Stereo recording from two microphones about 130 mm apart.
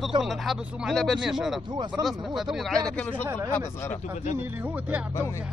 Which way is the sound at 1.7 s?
35° right (ahead or behind).